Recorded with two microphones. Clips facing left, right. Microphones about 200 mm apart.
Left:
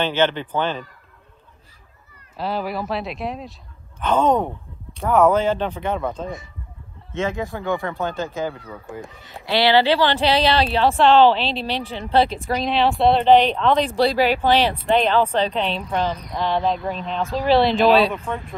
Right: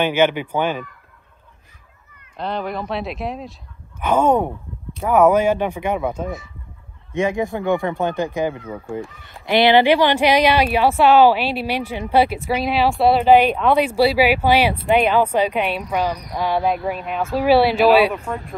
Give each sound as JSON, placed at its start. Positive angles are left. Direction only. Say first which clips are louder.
{"t": 0.0, "sound": "speech", "louder": "right 3 dB", "side_deg": -10}
{"t": 2.3, "sound": "speech", "louder": "even", "side_deg": 5}
{"t": 4.0, "sound": "speech", "louder": "right 2 dB", "side_deg": -15}
{"t": 13.3, "sound": "speech", "louder": "right 2 dB", "side_deg": -10}